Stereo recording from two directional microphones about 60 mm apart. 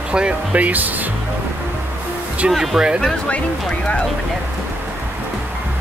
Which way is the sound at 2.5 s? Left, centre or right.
Centre.